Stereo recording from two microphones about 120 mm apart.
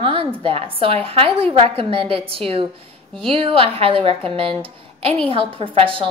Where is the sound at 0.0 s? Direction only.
45° right (ahead or behind).